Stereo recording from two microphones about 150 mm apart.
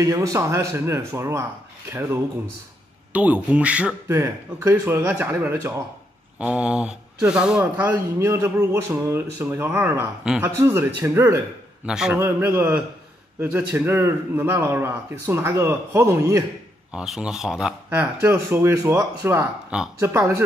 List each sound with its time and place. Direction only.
0.0 s a man's voice: 20° right (ahead or behind)
10.6 s a man's voice: 15° right (ahead or behind)
16.9 s a man's voice: 5° right (ahead or behind)